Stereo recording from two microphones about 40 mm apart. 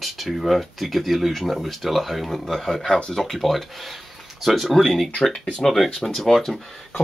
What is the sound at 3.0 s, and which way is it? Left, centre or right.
Speech, centre.